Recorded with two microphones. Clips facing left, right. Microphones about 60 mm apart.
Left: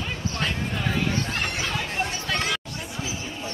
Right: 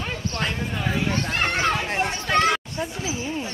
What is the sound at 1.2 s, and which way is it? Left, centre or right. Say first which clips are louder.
Chatter: right 6 dB; right.